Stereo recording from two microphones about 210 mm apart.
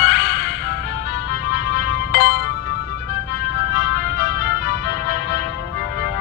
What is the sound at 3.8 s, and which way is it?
Music, 55° left (ahead or behind).